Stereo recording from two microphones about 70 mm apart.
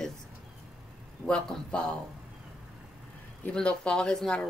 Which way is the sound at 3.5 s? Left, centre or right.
Centre.